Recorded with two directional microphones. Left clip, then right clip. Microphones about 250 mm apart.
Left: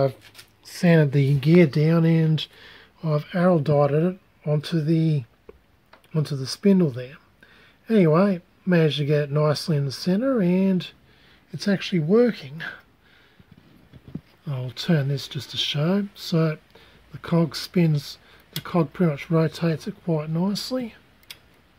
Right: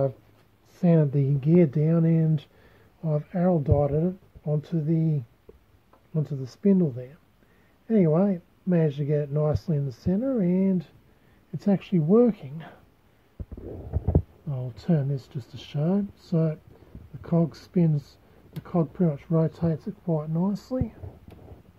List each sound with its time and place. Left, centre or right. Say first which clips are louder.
0.7 s speech: left 4 dB; centre
7.9 s speech: left 4 dB; centre
11.5 s speech: left 2 dB; centre
14.5 s speech: left 4 dB; centre
20.1 s speech: left 2 dB; left